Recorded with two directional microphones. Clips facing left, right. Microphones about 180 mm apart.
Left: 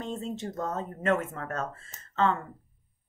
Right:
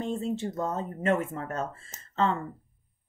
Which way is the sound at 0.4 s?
30° right (ahead or behind).